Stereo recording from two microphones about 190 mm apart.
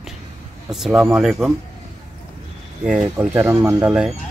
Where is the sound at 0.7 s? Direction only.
5° right (ahead or behind).